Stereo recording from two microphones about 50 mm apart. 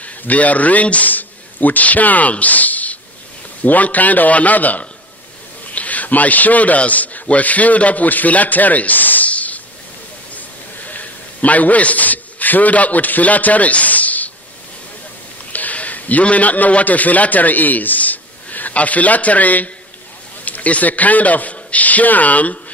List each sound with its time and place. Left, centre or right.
0.0 s a man's voice: left
10.3 s a sound: left
15.5 s a man's voice: left